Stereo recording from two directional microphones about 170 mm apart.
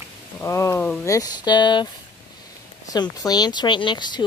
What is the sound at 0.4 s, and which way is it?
Speech, 15° left (ahead or behind).